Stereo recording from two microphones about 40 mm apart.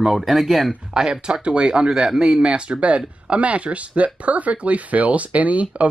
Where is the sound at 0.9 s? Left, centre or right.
Centre.